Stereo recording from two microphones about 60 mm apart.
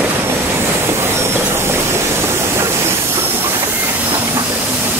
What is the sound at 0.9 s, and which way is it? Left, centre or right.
Train, right.